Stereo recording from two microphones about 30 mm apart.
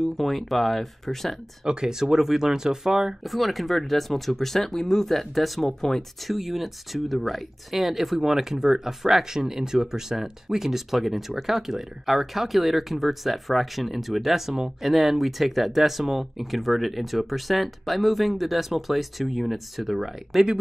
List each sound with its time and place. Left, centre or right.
0.0 s speech: centre
1.7 s speech: right
3.3 s speech: centre
5.7 s speech: centre
6.2 s speech: centre